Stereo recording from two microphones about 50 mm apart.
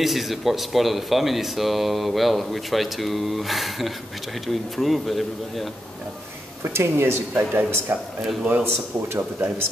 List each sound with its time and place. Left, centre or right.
0.0 s speech: centre
6.6 s speech: right